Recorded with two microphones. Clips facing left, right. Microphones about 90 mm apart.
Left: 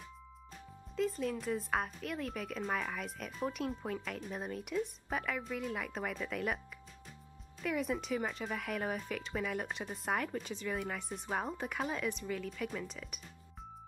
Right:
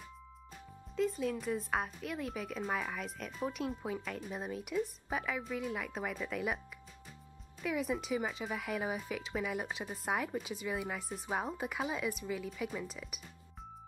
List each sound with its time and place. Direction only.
0.9 s a woman's voice: centre (ahead or behind)
7.6 s a woman's voice: centre (ahead or behind)